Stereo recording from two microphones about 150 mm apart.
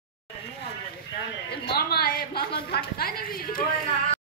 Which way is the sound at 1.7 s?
90° left.